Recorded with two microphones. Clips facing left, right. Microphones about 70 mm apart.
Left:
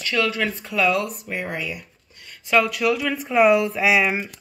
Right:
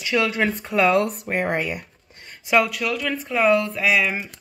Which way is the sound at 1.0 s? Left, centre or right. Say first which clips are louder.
Right 5 dB; right.